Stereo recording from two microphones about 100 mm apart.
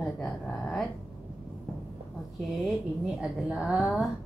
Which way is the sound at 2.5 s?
5° right (ahead or behind).